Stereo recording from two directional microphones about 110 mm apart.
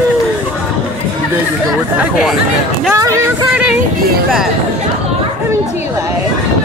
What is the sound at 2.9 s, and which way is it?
Speech, 25° right (ahead or behind).